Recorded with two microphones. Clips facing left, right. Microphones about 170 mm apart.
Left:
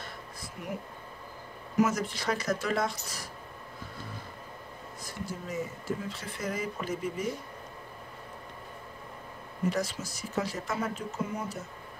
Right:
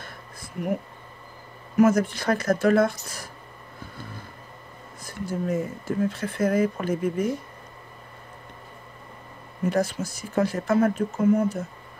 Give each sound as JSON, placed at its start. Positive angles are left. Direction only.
{"t": 0.0, "sound": "a sound", "side_deg": -50}
{"t": 1.8, "sound": "speech", "side_deg": -50}
{"t": 5.0, "sound": "speech", "side_deg": -50}
{"t": 9.7, "sound": "speech", "side_deg": -55}